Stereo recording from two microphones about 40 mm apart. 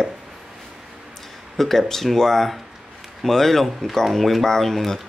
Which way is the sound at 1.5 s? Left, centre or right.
Centre.